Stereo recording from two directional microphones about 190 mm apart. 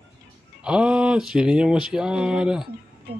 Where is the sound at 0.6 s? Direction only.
5° right (ahead or behind).